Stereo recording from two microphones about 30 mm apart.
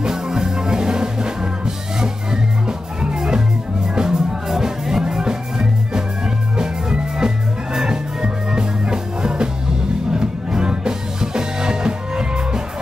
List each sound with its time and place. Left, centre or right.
0.1 s music: centre
3.0 s music: right